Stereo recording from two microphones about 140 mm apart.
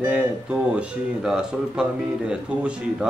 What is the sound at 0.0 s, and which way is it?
Speech, 10° right (ahead or behind).